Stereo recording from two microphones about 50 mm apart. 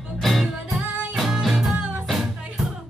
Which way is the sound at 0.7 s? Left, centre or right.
Right.